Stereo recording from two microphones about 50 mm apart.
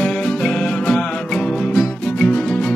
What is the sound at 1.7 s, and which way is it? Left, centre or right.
Music, centre.